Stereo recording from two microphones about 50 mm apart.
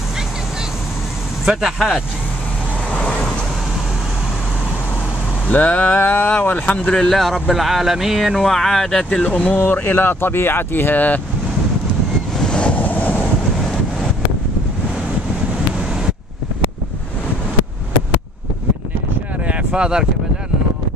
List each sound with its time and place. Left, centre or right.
1.4 s speech: centre
3.0 s vehicle: centre
5.5 s speech: left
5.9 s speech: left
6.5 s speech: left
7.0 s speech: centre
8.4 s speech: centre
9.2 s speech: left
9.6 s speech: left
12.4 s vehicle: centre
12.7 s train: left
19.4 s a sound: centre